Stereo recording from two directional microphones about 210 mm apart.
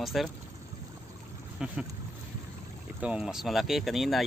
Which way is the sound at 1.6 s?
5° right (ahead or behind).